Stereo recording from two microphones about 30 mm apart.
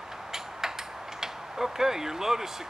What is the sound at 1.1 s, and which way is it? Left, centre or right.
Mechanisms, centre.